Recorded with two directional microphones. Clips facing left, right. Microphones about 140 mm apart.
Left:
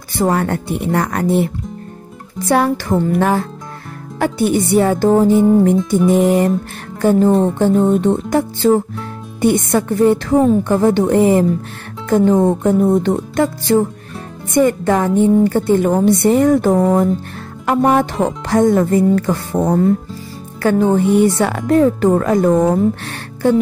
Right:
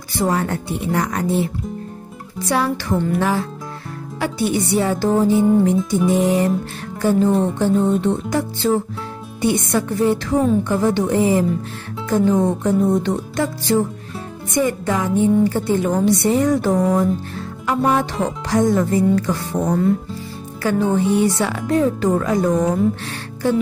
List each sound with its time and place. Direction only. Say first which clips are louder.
0.2 s speech: left 4 dB; 55° left (ahead or behind)
7.0 s speech: left 4 dB; 50° left (ahead or behind)